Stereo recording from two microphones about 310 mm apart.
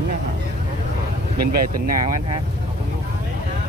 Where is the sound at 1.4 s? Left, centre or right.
Right.